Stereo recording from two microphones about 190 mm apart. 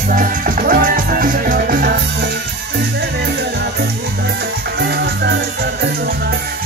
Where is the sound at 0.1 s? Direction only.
45° right (ahead or behind).